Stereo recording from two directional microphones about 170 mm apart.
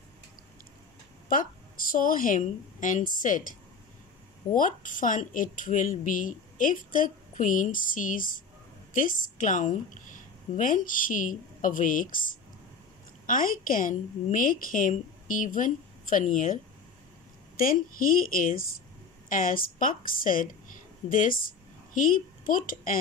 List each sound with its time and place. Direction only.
1.3 s speech: 55° left (ahead or behind)
4.5 s a woman's voice: 50° left (ahead or behind)
17.6 s a woman's voice: 55° left (ahead or behind)